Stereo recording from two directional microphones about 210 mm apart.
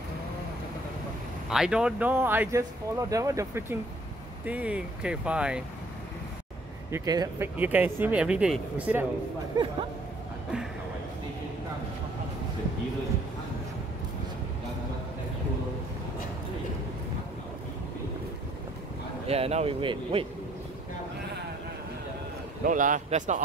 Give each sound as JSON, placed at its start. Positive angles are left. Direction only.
{"t": 1.5, "sound": "speech", "side_deg": -5}
{"t": 6.9, "sound": "speech", "side_deg": -15}
{"t": 9.6, "sound": "speech", "side_deg": -20}
{"t": 19.2, "sound": "speech", "side_deg": -30}
{"t": 22.7, "sound": "speech", "side_deg": -40}